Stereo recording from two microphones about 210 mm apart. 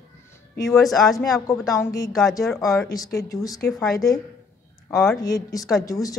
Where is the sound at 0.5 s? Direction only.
15° left (ahead or behind).